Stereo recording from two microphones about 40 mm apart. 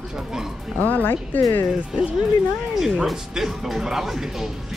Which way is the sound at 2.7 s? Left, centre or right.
Centre.